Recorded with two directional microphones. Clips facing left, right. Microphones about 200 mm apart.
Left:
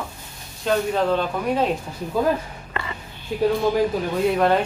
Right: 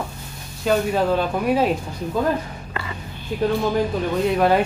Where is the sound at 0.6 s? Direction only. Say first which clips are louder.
Right 1 dB; 5° right (ahead or behind).